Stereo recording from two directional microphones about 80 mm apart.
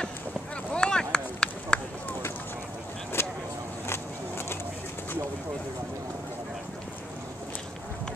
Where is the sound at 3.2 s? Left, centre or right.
Left.